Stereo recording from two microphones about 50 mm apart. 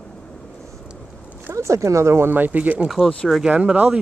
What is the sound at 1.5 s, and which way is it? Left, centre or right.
Speech, right.